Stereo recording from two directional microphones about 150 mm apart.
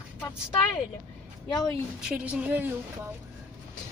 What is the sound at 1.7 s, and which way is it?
Speech, 5° right (ahead or behind).